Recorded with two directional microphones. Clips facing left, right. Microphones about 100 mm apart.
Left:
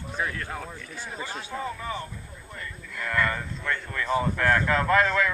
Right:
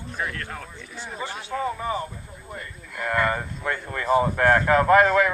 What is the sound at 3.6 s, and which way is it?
Speech, 35° right (ahead or behind).